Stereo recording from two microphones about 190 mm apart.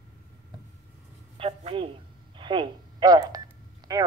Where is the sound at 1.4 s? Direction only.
30° right (ahead or behind).